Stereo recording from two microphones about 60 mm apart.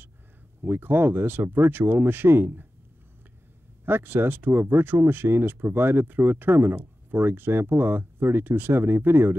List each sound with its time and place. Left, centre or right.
0.6 s speech: right
3.8 s speech: right